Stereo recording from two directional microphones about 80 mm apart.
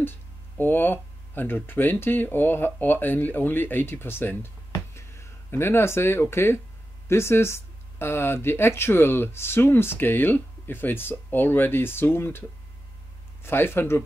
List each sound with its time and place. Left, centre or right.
0.0 s speech: left
4.7 s a sound: left
6.3 s speech: left